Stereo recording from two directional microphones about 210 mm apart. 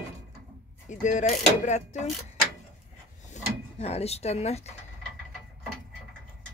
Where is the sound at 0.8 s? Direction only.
35° left (ahead or behind).